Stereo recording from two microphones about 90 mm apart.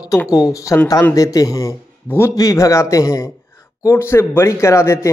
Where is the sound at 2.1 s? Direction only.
30° left (ahead or behind).